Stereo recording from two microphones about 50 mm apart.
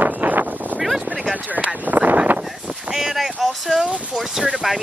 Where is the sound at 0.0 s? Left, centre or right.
Right.